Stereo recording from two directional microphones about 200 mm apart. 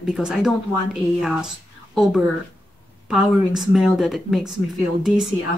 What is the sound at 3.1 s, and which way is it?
A woman's voice, centre (ahead or behind).